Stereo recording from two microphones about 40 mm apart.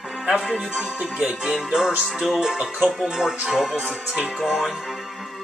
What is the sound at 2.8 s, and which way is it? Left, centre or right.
Speech, centre.